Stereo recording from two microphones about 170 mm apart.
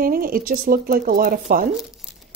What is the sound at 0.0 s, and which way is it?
Speech, 60° right (ahead or behind).